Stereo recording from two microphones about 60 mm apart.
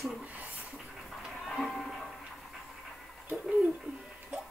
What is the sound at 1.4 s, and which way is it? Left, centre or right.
Music, centre.